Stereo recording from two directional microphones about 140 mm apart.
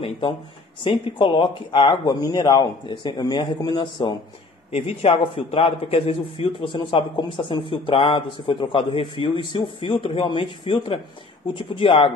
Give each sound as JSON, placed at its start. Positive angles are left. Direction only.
{"t": 0.8, "sound": "a man's voice", "side_deg": 35}